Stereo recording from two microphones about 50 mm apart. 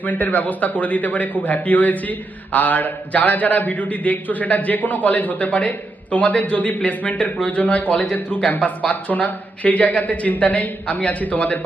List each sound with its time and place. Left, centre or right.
0.0 s a man's voice: left